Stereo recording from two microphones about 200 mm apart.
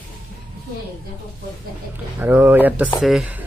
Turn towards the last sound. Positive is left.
turn(degrees=-5)  # may be behind; listen again after turning